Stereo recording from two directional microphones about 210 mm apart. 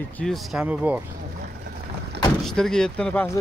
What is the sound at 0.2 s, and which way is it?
Speech, centre (ahead or behind).